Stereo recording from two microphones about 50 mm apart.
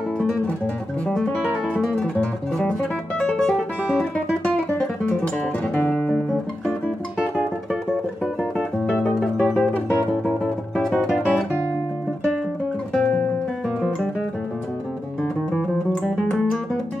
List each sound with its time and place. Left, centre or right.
1.0 s music: centre
3.2 s music: centre
5.9 s guitar: left
9.2 s music: centre
11.0 s music: centre
13.0 s guitar: left